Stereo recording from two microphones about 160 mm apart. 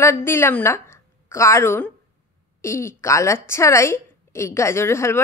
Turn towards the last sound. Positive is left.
turn(degrees=15)  # may be behind; listen again after turning